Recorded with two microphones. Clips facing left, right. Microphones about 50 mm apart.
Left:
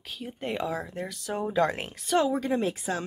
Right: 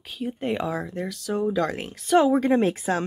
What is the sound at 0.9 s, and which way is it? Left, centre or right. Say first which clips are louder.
Speech: right 4 dB; centre.